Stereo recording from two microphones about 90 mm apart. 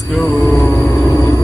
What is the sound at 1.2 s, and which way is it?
Vehicle, 40° left (ahead or behind).